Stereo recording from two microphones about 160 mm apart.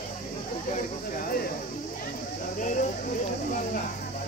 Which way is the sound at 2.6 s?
55° left (ahead or behind).